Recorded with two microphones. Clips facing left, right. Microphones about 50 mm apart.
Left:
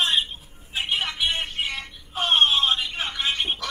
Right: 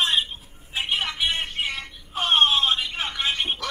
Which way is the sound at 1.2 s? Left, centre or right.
Right.